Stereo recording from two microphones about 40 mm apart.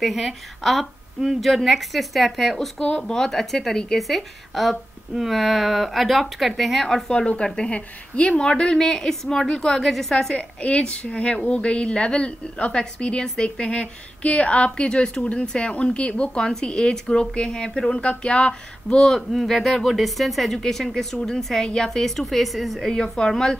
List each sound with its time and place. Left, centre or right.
0.0 s speech: centre
3.0 s speech: centre
7.1 s a woman's voice: left
7.7 s a woman's voice: left
8.5 s a woman's voice: centre
10.6 s a woman's voice: left
16.4 s a woman's voice: centre
19.0 s a woman's voice: centre
23.1 s a woman's voice: centre